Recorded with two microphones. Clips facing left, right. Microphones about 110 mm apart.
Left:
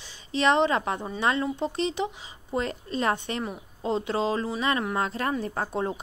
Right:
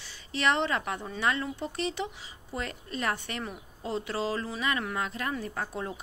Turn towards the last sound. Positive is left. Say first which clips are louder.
# left 6 dB
turn(degrees=35)  # may be behind; listen again after turning